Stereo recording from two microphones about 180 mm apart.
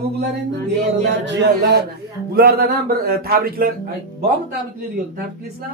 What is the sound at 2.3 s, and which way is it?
Speech, 55° right (ahead or behind).